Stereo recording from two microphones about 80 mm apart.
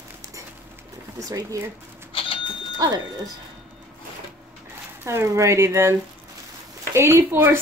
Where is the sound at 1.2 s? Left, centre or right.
Right.